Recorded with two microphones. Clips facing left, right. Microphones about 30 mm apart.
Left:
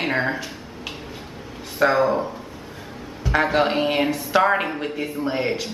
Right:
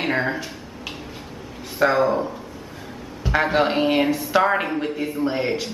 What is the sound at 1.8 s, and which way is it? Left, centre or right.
Speech, centre.